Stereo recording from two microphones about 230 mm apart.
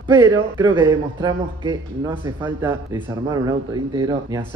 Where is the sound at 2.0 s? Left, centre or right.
Centre.